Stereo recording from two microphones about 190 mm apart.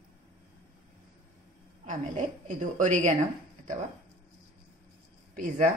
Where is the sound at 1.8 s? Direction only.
40° right (ahead or behind).